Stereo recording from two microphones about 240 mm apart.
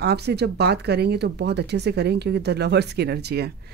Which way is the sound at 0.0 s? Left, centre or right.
Right.